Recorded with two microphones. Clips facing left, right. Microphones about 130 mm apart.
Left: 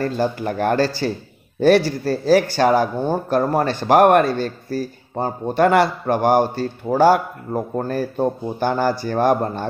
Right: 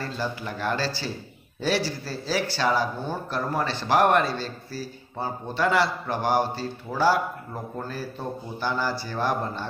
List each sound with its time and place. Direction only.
0.0 s speech: 50° left (ahead or behind)